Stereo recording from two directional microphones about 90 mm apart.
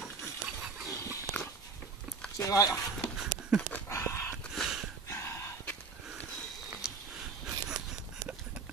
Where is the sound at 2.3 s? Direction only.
40° left (ahead or behind).